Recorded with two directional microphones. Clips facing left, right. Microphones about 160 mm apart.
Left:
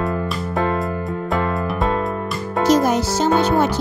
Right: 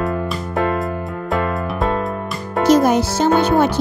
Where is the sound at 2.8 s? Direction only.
60° right (ahead or behind).